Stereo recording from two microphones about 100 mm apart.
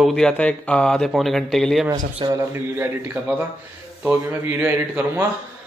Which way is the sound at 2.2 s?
50° right (ahead or behind).